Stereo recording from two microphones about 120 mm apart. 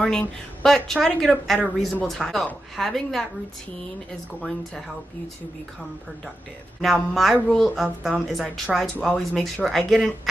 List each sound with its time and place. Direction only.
0.0 s a woman's voice: 10° left (ahead or behind)
6.8 s a woman's voice: centre (ahead or behind)